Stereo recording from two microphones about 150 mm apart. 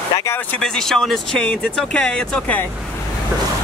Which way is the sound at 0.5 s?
5° left (ahead or behind).